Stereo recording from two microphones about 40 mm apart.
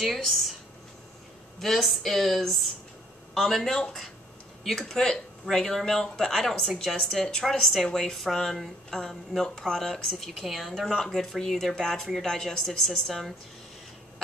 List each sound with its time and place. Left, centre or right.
0.0 s speech: centre
1.8 s speech: centre
4.8 s speech: centre
5.6 s speech: centre
6.8 s speech: centre
7.2 s speech: centre